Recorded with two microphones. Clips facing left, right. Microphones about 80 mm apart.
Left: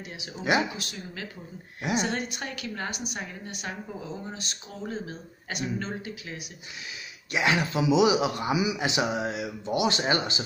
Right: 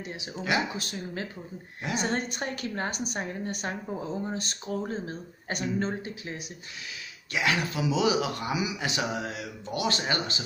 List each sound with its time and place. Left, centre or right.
0.7 s a woman's voice: right
7.3 s speech: left